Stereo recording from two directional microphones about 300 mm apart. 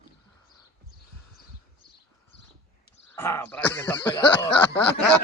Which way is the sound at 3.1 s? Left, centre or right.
Centre.